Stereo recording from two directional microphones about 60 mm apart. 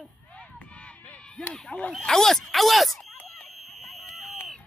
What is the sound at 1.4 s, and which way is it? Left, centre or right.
Speech, centre.